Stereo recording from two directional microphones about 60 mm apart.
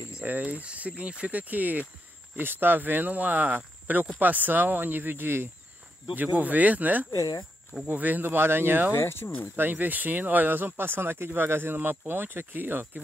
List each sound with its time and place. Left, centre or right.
0.2 s speech: right
6.1 s speech: right
8.9 s speech: left
9.6 s speech: right